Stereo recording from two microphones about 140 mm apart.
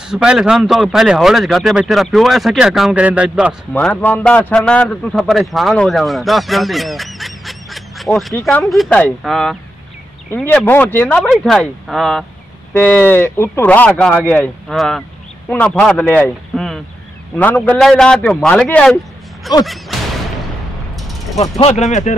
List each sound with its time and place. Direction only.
0.1 s a man's voice: 5° right (ahead or behind)
3.7 s a man's voice: 10° left (ahead or behind)
10.3 s speech: 10° left (ahead or behind)
11.1 s a man's voice: centre (ahead or behind)
12.7 s speech: 15° left (ahead or behind)
14.7 s a man's voice: centre (ahead or behind)
21.4 s speech: 50° left (ahead or behind)